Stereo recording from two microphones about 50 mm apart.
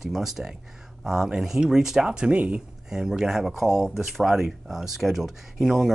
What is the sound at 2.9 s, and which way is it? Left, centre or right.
Speech, centre.